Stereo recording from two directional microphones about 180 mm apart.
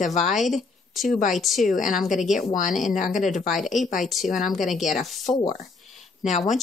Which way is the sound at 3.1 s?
45° left (ahead or behind).